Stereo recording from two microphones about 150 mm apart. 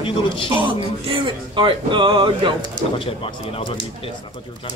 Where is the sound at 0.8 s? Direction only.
35° right (ahead or behind).